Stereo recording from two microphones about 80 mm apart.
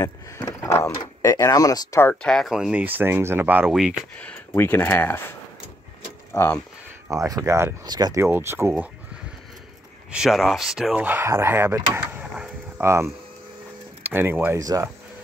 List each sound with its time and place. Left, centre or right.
0.5 s a sound: left
0.9 s speech: left
2.2 s speech: centre
2.7 s speech: right
3.7 s speech: centre
4.6 s speech: left
6.3 s speech: left
7.1 s speech: right
7.8 s speech: right
8.3 s speech: right
10.1 s speech: centre
11.0 s speech: right
14.6 s speech: right